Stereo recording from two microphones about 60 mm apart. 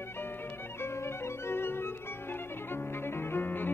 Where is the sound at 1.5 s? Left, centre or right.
Left.